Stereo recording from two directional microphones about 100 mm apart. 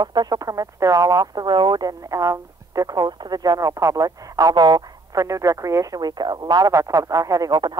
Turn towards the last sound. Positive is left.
turn(degrees=-40)  # may be behind; listen again after turning